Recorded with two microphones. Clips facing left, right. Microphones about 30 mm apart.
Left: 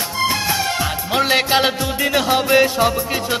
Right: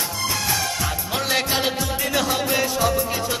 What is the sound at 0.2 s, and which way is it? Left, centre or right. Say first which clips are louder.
Music: left 6 dB; left.